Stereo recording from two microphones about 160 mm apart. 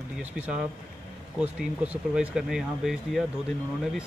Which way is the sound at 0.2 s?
10° right (ahead or behind).